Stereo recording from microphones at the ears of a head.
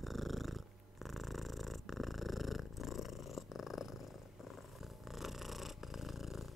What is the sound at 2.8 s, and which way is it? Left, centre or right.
Purr, left.